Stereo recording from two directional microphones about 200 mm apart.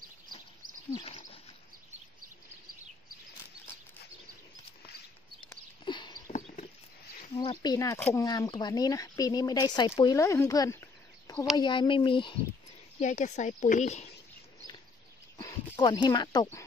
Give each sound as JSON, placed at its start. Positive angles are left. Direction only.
{"t": 0.9, "sound": "a sound", "side_deg": 25}
{"t": 5.9, "sound": "horse", "side_deg": 20}
{"t": 6.3, "sound": "a sound", "side_deg": 35}
{"t": 7.3, "sound": "speech", "side_deg": 20}
{"t": 13.0, "sound": "speech", "side_deg": 35}
{"t": 15.3, "sound": "speech", "side_deg": 20}